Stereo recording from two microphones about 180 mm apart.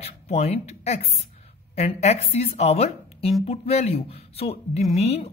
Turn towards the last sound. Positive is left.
turn(degrees=35)  # may be behind; listen again after turning